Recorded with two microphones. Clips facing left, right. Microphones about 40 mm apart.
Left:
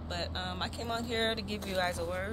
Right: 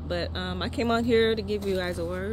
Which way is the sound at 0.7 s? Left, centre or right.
Right.